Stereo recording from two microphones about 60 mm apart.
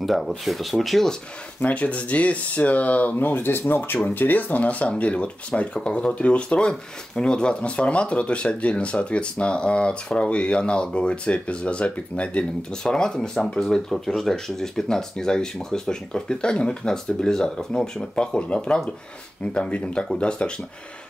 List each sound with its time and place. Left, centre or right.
0.0 s speech: centre
1.6 s speech: left